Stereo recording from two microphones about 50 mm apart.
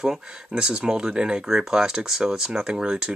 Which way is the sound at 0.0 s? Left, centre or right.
Centre.